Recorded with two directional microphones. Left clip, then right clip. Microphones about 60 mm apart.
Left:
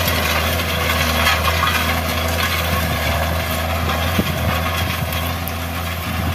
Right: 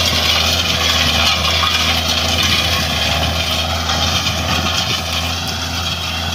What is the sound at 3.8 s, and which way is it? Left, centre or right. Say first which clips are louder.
Vehicle: right 4 dB; left.